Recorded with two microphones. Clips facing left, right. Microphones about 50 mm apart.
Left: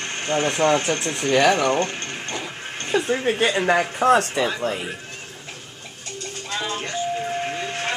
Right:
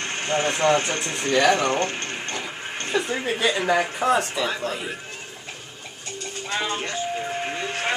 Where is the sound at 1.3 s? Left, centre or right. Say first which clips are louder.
Left 1 dB; left.